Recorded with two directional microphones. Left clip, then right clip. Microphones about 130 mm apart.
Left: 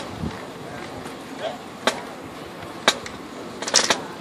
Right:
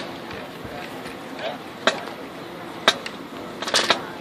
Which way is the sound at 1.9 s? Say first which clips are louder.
Right 2 dB; 5° left (ahead or behind).